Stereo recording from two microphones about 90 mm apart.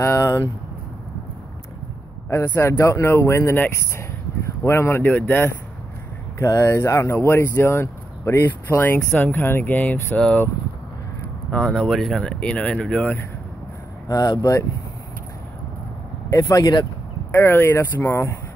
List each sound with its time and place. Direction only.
0.0 s speech: 35° left (ahead or behind)
2.8 s speech: 30° left (ahead or behind)
6.3 s speech: 30° left (ahead or behind); by 10.4 s 15° left (ahead or behind)
11.5 s speech: 10° left (ahead or behind)
14.0 s speech: 45° left (ahead or behind)
16.3 s speech: 35° left (ahead or behind)
17.3 s speech: 25° left (ahead or behind)